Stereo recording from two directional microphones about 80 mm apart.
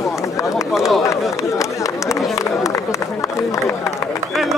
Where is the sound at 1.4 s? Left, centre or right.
Left.